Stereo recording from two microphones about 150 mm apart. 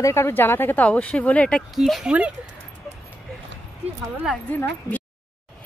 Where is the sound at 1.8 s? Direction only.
5° right (ahead or behind).